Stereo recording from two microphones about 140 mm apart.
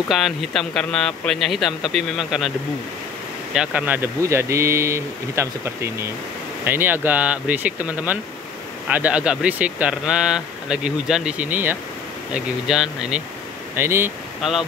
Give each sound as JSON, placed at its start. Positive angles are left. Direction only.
{"t": 0.1, "sound": "speech", "side_deg": 0}
{"t": 3.5, "sound": "speech", "side_deg": -10}
{"t": 13.7, "sound": "speech", "side_deg": -15}
{"t": 14.4, "sound": "speech", "side_deg": 0}